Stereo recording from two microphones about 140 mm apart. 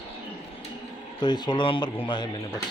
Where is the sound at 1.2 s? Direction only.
30° left (ahead or behind).